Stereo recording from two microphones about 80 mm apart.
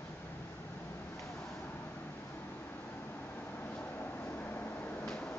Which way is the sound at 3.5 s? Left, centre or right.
Left.